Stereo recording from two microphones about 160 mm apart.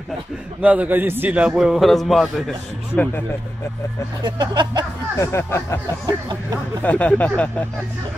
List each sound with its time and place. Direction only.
0.6 s a man's voice: 10° right (ahead or behind)
4.2 s speech: 25° right (ahead or behind)
5.2 s speech: 15° left (ahead or behind)